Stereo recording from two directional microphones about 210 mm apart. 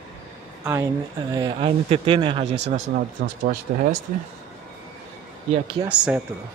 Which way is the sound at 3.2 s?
45° right (ahead or behind).